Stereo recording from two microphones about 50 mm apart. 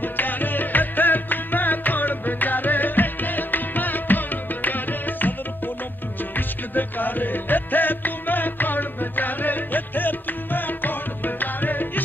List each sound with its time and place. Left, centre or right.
0.0 s music: left
6.3 s music: left